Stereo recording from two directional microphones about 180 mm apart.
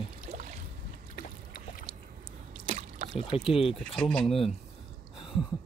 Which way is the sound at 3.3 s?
30° left (ahead or behind).